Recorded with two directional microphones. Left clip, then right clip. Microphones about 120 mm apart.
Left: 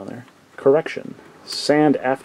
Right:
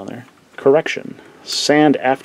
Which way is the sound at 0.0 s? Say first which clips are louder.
Right 3 dB; 25° right (ahead or behind).